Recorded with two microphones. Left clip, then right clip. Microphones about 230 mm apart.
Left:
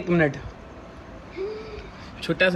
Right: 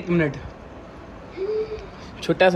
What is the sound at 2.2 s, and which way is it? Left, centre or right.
Speech, centre.